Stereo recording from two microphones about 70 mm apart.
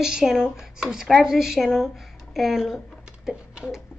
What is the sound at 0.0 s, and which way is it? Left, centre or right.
Speech, centre.